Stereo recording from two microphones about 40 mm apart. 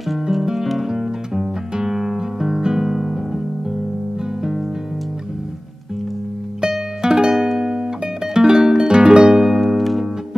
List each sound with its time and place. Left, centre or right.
0.1 s music: centre
0.7 s guitar: centre
6.6 s music: centre
9.6 s music: centre